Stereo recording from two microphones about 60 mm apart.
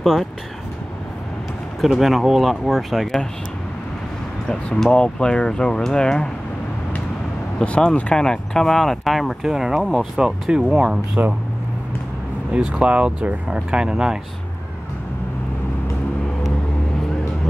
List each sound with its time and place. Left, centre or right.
0.0 s speech: centre
1.8 s speech: centre
4.5 s speech: centre
7.5 s speech: centre
11.2 s speech: right
12.5 s speech: centre